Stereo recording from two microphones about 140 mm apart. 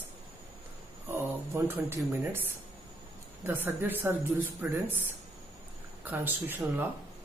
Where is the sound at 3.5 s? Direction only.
15° right (ahead or behind).